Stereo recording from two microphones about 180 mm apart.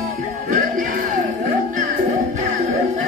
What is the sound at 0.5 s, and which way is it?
Music, 50° right (ahead or behind).